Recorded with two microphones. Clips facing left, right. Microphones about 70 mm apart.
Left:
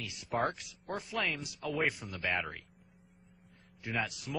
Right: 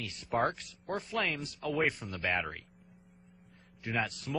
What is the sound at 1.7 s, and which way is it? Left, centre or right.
Speech, right.